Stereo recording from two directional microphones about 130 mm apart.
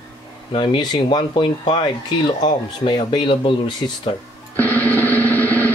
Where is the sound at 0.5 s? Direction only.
40° left (ahead or behind).